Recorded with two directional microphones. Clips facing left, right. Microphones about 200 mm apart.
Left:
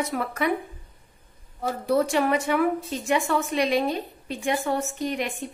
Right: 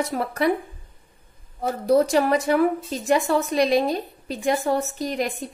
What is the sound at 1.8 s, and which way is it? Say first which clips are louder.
A woman's voice: right 4 dB; 35° right (ahead or behind).